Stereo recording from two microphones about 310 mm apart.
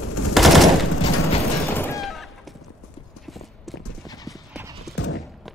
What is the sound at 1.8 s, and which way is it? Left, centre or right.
Fusillade, centre.